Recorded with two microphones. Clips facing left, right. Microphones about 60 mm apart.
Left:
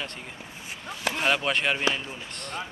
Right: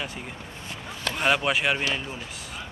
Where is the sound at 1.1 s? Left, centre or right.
Centre.